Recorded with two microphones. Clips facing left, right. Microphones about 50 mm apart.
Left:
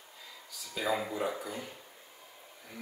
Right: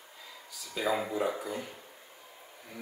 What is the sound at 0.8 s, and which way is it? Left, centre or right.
Speech, centre.